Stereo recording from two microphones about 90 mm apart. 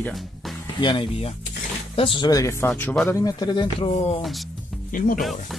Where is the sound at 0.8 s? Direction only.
60° left (ahead or behind).